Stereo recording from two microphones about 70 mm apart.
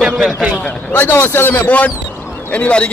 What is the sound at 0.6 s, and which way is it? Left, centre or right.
Speech, centre.